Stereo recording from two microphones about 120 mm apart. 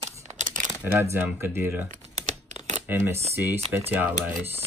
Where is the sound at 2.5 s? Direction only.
70° right (ahead or behind).